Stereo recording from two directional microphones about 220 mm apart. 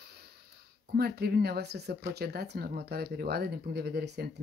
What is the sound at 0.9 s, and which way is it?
Speech, 45° right (ahead or behind).